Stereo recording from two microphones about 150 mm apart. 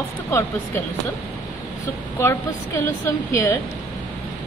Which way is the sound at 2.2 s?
15° left (ahead or behind).